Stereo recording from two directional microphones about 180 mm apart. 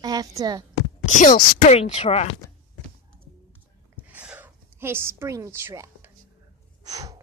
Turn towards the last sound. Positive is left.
turn(degrees=-20)  # may be behind; listen again after turning